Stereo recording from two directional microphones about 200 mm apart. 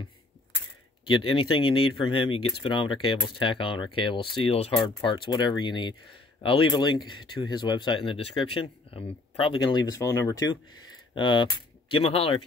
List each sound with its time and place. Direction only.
1.2 s speech: 25° left (ahead or behind)